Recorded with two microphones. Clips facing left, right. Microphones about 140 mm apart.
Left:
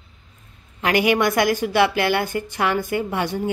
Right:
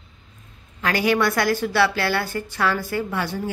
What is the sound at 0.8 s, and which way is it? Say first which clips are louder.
A woman's voice: left 2 dB; 15° left (ahead or behind).